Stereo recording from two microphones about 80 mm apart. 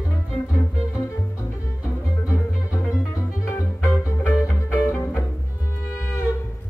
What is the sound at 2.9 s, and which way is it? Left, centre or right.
Music, left.